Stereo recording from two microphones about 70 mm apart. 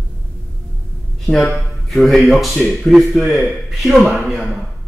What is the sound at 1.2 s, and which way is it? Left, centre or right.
Speech, centre.